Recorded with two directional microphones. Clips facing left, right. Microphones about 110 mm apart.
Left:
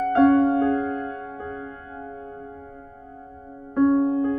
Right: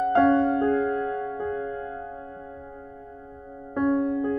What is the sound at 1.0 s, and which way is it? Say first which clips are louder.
Music: right 4 dB; 25° left (ahead or behind).